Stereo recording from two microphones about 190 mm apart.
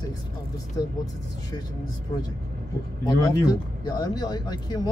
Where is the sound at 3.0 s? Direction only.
20° left (ahead or behind).